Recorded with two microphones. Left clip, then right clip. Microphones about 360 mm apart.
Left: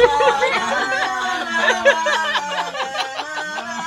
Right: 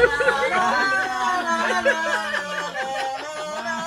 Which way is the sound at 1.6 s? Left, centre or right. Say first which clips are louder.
Left 9 dB; centre.